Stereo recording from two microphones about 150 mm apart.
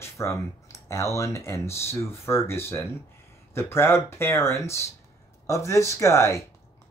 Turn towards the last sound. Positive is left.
turn(degrees=20)  # may be behind; listen again after turning